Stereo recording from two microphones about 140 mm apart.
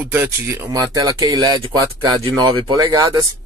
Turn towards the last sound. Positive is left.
turn(degrees=-25)  # may be behind; listen again after turning